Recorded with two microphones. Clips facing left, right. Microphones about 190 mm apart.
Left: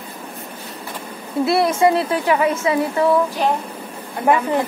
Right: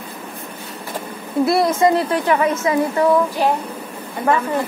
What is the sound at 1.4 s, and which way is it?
Speech, 25° left (ahead or behind).